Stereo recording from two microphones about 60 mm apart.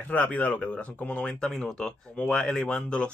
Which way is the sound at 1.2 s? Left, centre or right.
Centre.